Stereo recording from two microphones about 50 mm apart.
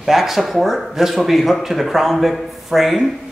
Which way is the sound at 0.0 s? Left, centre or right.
Centre.